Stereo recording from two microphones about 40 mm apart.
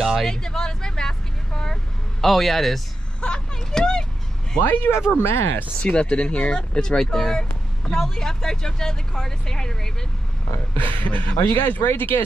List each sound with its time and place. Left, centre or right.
0.0 s a sound: centre
0.3 s vehicle: centre
2.2 s a man's voice: centre
3.2 s vehicle: centre
4.6 s speech: left
5.2 s speech: left
5.8 s speech: left
10.8 s speech: left
11.6 s speech: left